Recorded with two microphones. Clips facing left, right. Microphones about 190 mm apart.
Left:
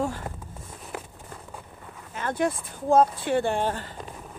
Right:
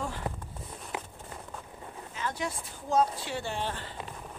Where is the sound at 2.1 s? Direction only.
55° left (ahead or behind).